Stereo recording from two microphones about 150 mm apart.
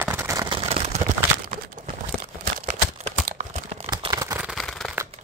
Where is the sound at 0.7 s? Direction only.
50° right (ahead or behind).